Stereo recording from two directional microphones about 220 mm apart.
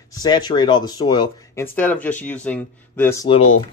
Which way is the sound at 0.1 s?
20° left (ahead or behind).